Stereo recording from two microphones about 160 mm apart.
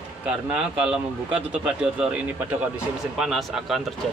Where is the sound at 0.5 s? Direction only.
5° right (ahead or behind).